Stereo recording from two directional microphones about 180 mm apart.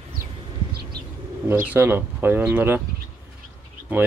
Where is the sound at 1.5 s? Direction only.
10° right (ahead or behind).